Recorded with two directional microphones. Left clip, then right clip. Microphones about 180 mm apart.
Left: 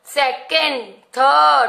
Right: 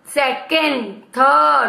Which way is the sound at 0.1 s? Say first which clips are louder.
Even; 40° left (ahead or behind).